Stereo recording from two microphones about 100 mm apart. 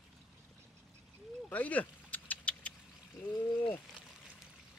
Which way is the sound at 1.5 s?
15° left (ahead or behind).